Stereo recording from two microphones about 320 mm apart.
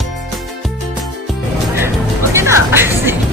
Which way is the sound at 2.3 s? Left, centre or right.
Centre.